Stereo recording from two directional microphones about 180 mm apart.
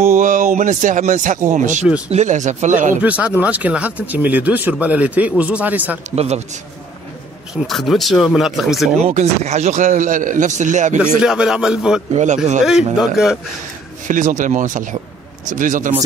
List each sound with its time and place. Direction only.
0.0 s a man's voice: 45° right (ahead or behind)
3.0 s speech: 5° right (ahead or behind)
6.0 s speech: 40° right (ahead or behind)
7.6 s speech: centre (ahead or behind)
9.0 s a man's voice: 40° right (ahead or behind)
11.0 s speech: 5° right (ahead or behind)
12.1 s speech: 40° right (ahead or behind)
12.6 s speech: 5° right (ahead or behind)
14.0 s a man's voice: 45° right (ahead or behind)